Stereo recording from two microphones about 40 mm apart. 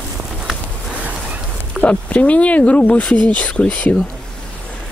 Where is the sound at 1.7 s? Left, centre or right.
Left.